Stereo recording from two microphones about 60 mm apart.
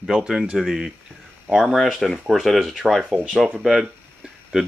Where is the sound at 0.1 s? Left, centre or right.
Centre.